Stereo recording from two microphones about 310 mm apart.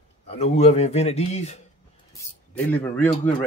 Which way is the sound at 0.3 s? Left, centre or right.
Centre.